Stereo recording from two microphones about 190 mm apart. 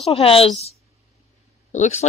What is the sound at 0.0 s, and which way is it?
Speech, 30° left (ahead or behind).